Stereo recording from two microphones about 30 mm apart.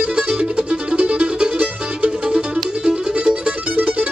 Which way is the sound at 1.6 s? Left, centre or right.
Right.